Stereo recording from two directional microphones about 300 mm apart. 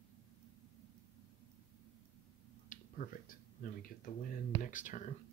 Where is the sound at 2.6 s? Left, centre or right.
Left.